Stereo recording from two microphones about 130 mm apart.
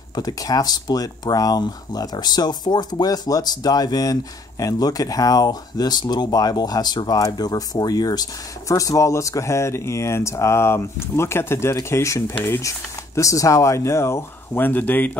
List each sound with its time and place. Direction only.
0.1 s speech: 30° left (ahead or behind)